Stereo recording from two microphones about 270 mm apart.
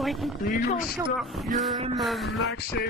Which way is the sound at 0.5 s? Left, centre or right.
Left.